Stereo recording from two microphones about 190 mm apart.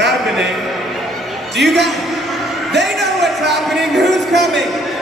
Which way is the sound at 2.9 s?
Centre (ahead or behind).